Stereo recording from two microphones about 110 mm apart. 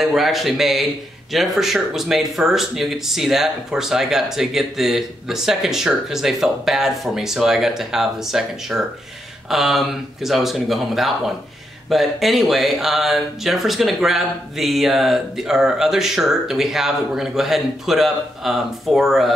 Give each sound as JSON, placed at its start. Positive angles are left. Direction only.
{"t": 0.0, "sound": "speech", "side_deg": 0}